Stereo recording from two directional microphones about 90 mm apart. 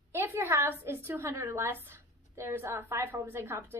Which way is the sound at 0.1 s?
30° right (ahead or behind).